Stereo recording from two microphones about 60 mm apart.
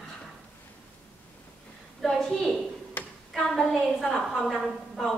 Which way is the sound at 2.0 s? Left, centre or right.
Centre.